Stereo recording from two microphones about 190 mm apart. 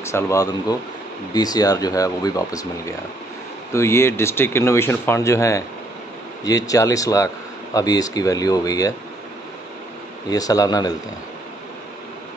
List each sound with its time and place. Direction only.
0.0 s speech: 15° left (ahead or behind)
10.3 s speech: 20° left (ahead or behind)